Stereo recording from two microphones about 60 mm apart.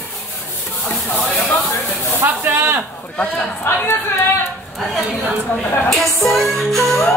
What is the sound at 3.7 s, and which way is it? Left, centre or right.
Speech, left.